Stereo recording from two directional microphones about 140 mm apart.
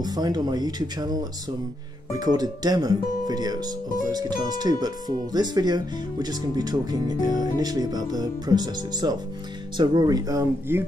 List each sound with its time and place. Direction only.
0.0 s speech: 30° right (ahead or behind)